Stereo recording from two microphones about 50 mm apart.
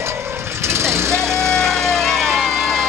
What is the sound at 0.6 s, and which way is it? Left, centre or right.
Vehicle, right.